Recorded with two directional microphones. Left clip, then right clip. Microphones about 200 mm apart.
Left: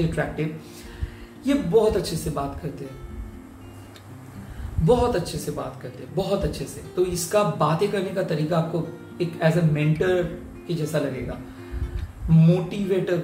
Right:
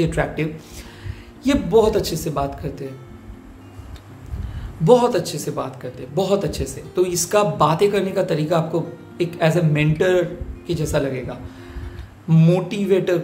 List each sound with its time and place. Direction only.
0.1 s speech: 40° right (ahead or behind)
4.8 s speech: 35° right (ahead or behind)